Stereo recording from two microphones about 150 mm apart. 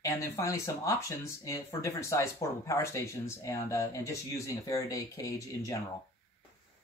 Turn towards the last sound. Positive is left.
turn(degrees=20)  # may be behind; listen again after turning